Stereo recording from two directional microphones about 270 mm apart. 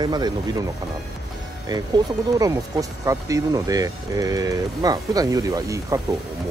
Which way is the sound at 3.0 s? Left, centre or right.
Centre.